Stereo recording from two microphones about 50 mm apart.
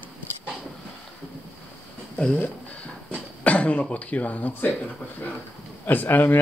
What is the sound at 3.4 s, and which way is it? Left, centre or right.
Speech, left.